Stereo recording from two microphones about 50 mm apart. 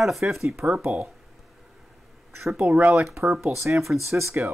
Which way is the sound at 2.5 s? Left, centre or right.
Right.